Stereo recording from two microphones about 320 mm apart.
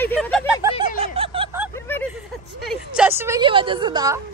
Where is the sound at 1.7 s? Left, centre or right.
Centre.